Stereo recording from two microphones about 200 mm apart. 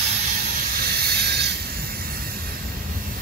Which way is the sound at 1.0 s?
55° right (ahead or behind).